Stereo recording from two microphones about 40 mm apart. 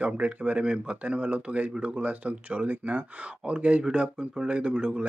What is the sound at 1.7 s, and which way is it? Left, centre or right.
Speech, right.